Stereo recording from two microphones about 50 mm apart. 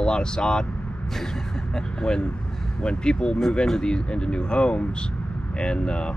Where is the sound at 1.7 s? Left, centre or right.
Centre.